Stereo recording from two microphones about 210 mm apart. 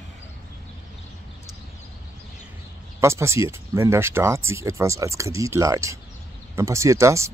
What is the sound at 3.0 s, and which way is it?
Speech, 15° right (ahead or behind).